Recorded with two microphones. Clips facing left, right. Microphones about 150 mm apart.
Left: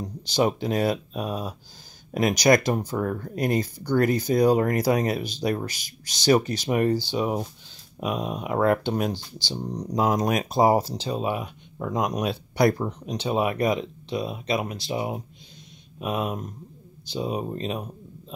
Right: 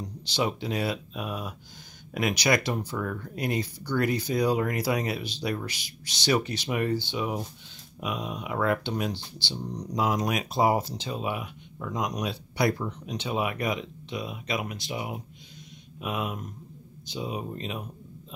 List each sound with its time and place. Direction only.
0.0 s speech: 45° left (ahead or behind)
11.9 s speech: 50° left (ahead or behind); by 17.8 s 35° left (ahead or behind)